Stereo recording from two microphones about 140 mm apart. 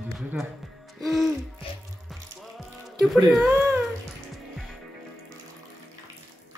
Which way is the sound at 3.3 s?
5° right (ahead or behind).